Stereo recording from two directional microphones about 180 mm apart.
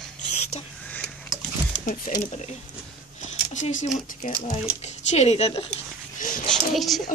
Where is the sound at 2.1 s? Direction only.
45° left (ahead or behind).